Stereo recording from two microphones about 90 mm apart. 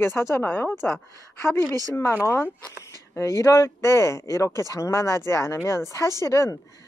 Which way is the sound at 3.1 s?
35° left (ahead or behind).